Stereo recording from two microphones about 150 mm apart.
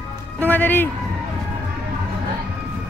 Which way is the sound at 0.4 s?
10° left (ahead or behind).